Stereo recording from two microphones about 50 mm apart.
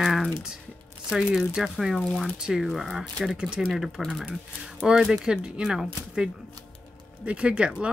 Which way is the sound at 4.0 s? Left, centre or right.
Centre.